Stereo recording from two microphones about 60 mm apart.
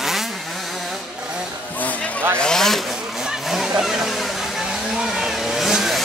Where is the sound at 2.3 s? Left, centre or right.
Centre.